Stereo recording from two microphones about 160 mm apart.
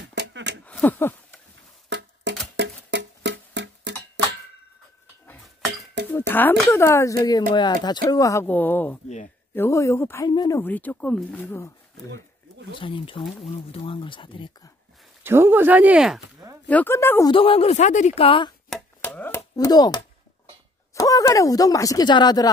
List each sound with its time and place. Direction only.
0.0 s a sound: 90° right
0.7 s a sound: 10° left (ahead or behind)
1.9 s a sound: 90° right
2.5 s music: 90° right
6.0 s music: 90° right
6.3 s speech: 10° left (ahead or behind)
10.6 s speech: 10° left (ahead or behind)
12.7 s speech: 30° left (ahead or behind)
15.2 s speech: 15° right (ahead or behind)
16.6 s speech: 10° left (ahead or behind)
17.3 s speech: 35° left (ahead or behind)
18.7 s chopping: 10° left (ahead or behind); by 20.0 s 25° left (ahead or behind)
20.9 s speech: 20° left (ahead or behind)